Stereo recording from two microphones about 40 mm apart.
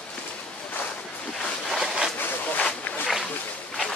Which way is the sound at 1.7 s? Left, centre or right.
Centre.